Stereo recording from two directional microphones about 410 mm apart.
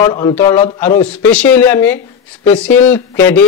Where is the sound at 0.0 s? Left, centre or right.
Centre.